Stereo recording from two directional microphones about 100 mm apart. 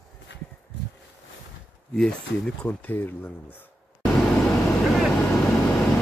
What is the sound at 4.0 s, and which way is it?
Vehicle, 10° left (ahead or behind).